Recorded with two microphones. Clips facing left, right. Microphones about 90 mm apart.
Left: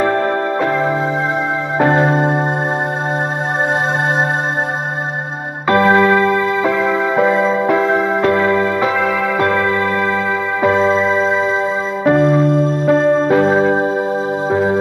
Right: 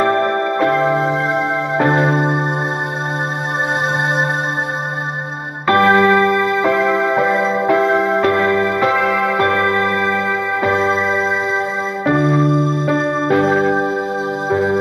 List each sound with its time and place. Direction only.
0.0 s music: 10° left (ahead or behind)
2.0 s music: 5° left (ahead or behind)
5.7 s music: 10° left (ahead or behind)
12.0 s music: centre (ahead or behind)
12.8 s music: 15° left (ahead or behind)